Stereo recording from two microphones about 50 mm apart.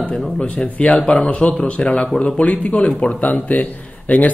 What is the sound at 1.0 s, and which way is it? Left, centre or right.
Speech, left.